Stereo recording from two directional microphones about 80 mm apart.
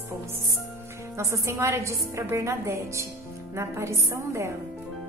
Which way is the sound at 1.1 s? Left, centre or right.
Right.